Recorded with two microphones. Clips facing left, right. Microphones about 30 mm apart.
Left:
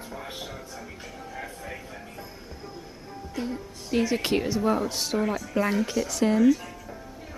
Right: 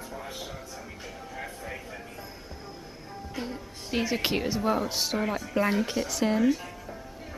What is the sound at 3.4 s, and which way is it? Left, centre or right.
Speech, centre.